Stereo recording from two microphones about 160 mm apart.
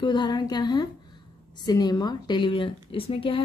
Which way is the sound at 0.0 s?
30° left (ahead or behind).